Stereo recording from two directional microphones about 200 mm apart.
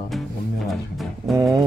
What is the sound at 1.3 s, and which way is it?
Speech, 20° right (ahead or behind).